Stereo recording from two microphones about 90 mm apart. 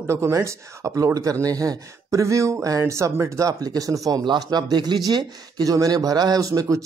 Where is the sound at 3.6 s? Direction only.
45° right (ahead or behind).